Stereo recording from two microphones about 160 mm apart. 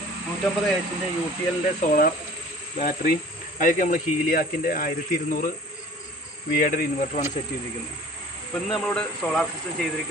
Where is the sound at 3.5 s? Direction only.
55° left (ahead or behind).